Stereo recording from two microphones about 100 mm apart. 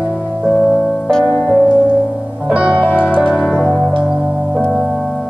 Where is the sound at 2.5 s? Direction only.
10° right (ahead or behind).